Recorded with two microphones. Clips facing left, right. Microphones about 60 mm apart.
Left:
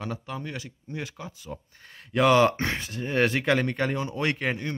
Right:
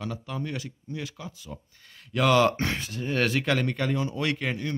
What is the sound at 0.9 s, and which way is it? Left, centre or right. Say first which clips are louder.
Speech: left 1 dB; left.